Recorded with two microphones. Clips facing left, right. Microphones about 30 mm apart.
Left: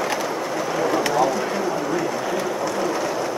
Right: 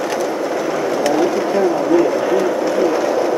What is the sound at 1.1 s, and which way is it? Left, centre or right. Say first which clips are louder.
Bird: right 5 dB; centre.